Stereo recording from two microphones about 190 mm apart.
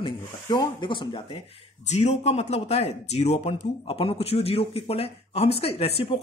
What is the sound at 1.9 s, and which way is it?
A man's voice, 35° left (ahead or behind).